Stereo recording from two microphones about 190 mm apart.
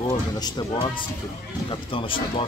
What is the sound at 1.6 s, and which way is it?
Speech, 25° left (ahead or behind).